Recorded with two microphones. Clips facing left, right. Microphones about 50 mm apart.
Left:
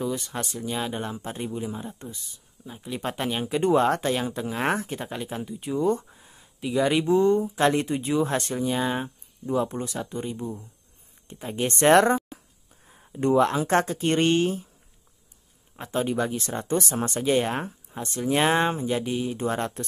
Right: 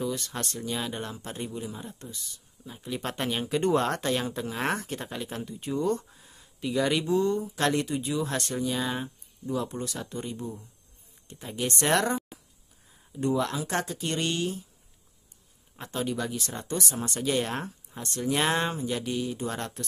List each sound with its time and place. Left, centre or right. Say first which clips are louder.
0.0 s speech: left 2 dB; centre
2.7 s speech: left 2 dB; centre
7.0 s speech: left 5 dB; left
7.8 s speech: left 5 dB; left
9.9 s speech: left 4 dB; centre; by 14.6 s left
15.9 s speech: left 5 dB; left
16.8 s speech: left 5 dB; left
17.1 s speech: left 5 dB; left